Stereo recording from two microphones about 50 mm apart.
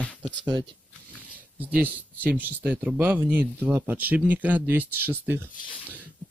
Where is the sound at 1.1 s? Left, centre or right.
Right.